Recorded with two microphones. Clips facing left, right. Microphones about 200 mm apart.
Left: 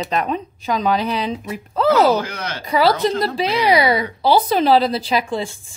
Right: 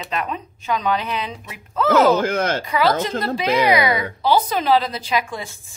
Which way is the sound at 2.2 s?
50° right (ahead or behind).